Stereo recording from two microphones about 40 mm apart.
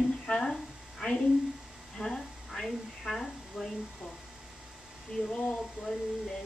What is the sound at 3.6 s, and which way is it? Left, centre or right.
Speech, centre.